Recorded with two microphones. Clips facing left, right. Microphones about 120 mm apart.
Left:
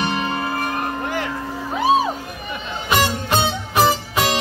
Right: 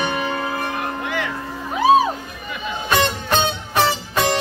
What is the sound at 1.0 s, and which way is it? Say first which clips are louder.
Music: left 1 dB; 35° left (ahead or behind).